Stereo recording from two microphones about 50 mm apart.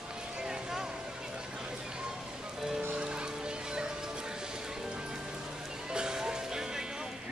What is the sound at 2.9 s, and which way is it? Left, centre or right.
Music, right.